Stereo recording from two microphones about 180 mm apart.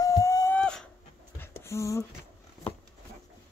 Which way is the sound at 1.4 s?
15° left (ahead or behind).